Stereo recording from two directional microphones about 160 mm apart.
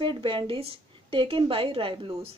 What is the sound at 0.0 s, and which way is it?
A woman's voice, 30° right (ahead or behind).